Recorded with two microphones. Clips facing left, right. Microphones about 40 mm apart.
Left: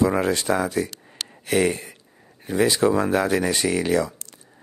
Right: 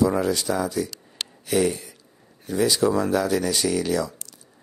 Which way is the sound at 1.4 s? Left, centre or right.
Left.